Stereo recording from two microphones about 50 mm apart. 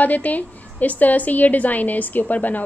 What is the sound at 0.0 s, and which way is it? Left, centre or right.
A woman's voice, left.